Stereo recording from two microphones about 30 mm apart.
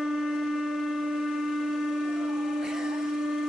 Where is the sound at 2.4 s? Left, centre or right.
Centre.